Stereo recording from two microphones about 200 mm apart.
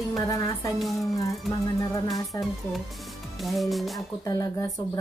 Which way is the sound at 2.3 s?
15° left (ahead or behind).